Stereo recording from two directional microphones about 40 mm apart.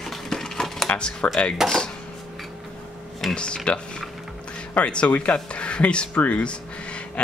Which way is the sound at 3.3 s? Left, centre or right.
Left.